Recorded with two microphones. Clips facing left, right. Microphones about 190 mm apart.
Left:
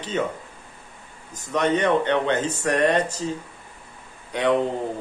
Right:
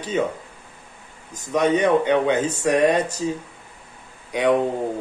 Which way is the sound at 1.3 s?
10° right (ahead or behind).